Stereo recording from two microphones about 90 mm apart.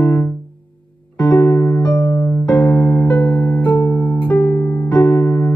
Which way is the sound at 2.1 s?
25° left (ahead or behind).